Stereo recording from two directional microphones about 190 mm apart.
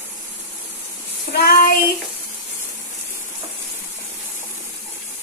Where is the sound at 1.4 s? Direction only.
50° left (ahead or behind).